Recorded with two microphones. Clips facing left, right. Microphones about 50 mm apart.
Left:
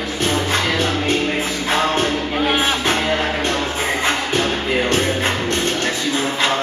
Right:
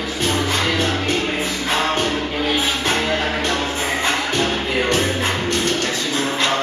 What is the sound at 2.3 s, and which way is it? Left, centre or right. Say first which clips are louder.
Music: left 2 dB; left.